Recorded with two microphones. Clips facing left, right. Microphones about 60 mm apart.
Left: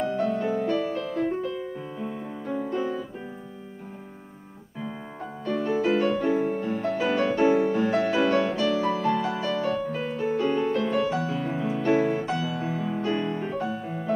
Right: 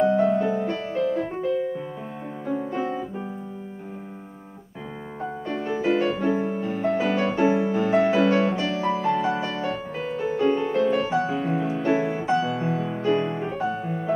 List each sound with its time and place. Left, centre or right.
0.0 s music: centre
0.8 s music: centre
2.4 s music: centre
5.2 s music: centre
13.3 s music: centre